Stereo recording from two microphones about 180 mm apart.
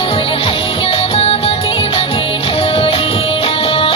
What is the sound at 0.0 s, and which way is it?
Music, 30° left (ahead or behind).